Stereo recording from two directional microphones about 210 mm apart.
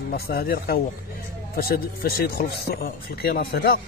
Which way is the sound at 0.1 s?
50° left (ahead or behind).